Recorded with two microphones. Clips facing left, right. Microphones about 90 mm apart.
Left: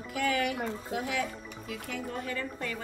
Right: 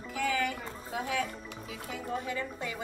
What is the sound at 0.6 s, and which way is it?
Speech, 60° left (ahead or behind).